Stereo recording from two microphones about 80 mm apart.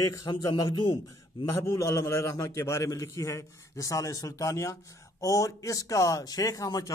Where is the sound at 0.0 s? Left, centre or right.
Left.